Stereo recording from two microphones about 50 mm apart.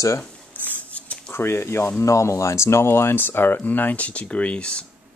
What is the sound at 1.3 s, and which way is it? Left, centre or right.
Speech, left.